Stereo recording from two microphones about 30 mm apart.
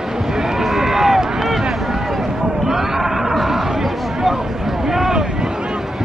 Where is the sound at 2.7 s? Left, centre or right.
Centre.